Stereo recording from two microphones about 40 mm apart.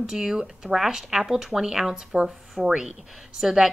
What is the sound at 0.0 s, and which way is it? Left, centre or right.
A woman's voice, centre.